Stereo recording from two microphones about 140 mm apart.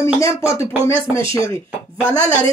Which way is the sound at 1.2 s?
40° right (ahead or behind).